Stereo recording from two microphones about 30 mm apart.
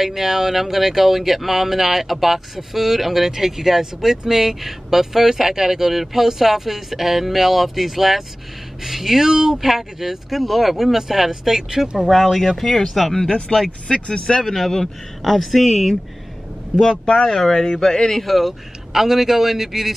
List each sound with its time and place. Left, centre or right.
0.0 s speech: centre
9.3 s speech: right
12.5 s speech: centre
13.5 s speech: left
13.8 s speech: left
14.4 s speech: centre
16.9 s speech: left
17.3 s speech: centre
18.2 s speech: centre